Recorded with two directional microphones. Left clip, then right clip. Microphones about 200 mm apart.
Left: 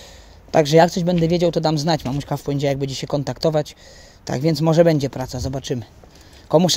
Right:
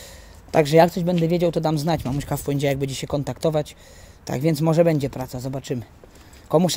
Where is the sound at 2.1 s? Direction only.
5° left (ahead or behind).